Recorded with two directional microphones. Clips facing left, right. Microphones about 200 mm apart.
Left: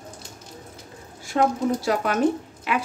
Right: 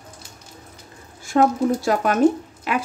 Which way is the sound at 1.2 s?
50° right (ahead or behind).